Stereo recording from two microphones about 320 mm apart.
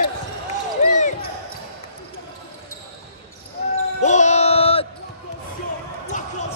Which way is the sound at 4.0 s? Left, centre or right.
Left.